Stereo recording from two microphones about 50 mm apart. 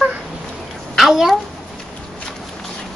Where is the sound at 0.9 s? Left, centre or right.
Centre.